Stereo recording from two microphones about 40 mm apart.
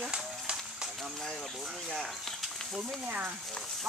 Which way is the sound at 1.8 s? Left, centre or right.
Centre.